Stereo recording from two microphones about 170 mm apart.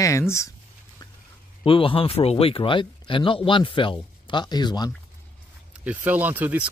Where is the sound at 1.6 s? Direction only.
30° left (ahead or behind).